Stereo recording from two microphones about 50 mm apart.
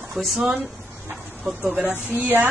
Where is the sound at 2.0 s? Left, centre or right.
Right.